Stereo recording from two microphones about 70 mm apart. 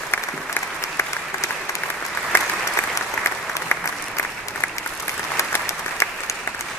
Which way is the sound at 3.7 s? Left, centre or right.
Left.